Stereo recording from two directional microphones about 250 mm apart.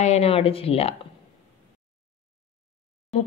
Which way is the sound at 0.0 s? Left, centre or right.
Left.